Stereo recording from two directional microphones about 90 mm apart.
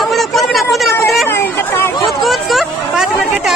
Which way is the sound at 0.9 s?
30° left (ahead or behind).